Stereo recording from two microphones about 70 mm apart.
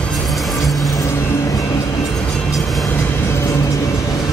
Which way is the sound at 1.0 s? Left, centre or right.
Left.